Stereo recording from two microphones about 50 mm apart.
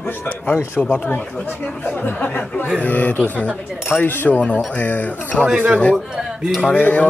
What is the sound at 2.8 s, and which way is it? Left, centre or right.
Speech, left.